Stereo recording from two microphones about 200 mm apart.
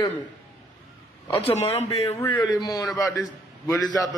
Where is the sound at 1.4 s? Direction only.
30° left (ahead or behind).